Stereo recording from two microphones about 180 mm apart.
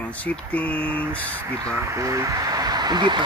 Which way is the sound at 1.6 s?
15° right (ahead or behind).